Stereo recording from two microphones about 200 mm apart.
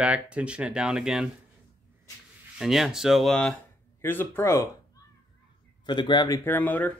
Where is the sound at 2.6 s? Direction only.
Centre (ahead or behind).